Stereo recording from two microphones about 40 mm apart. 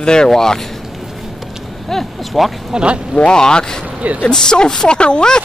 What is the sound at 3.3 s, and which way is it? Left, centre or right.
Speech, centre.